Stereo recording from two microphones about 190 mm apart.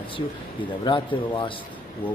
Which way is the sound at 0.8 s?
25° left (ahead or behind).